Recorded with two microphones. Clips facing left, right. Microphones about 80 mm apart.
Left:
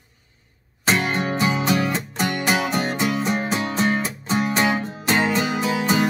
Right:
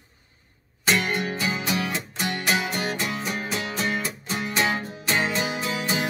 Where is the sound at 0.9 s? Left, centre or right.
Left.